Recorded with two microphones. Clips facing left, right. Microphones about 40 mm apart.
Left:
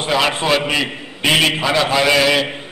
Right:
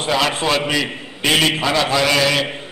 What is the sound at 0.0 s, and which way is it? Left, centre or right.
A man's voice, centre.